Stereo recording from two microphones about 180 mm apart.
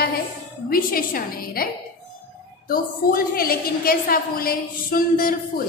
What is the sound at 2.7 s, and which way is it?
A woman's voice, 55° left (ahead or behind).